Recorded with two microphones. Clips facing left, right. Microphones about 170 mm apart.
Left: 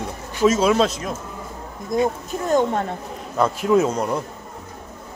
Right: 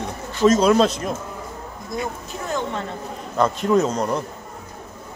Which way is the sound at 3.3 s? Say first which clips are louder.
Left 1 dB; 5° left (ahead or behind).